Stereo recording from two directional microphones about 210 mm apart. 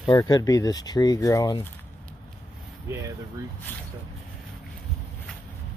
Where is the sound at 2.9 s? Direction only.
15° right (ahead or behind).